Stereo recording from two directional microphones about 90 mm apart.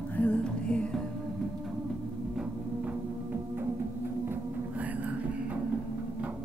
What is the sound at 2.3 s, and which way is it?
Music, 10° right (ahead or behind).